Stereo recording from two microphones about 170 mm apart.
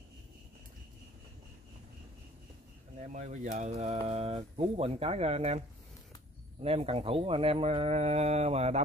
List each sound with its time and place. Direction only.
3.0 s speech: 45° right (ahead or behind)
6.6 s speech: 35° right (ahead or behind)